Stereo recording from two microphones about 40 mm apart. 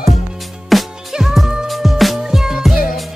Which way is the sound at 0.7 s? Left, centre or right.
Centre.